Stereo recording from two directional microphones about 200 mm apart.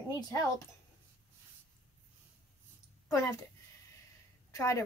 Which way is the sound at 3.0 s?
15° left (ahead or behind).